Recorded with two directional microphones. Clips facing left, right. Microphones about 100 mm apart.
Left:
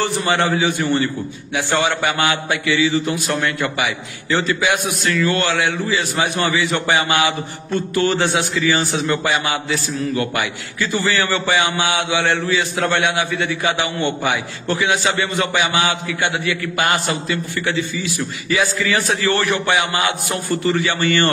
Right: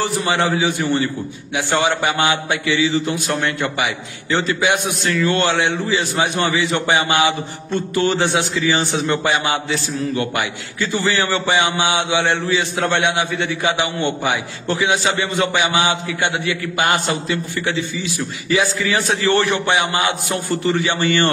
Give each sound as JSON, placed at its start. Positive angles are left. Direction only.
{"t": 0.0, "sound": "a man's voice", "side_deg": -15}
{"t": 8.7, "sound": "a man's voice", "side_deg": -30}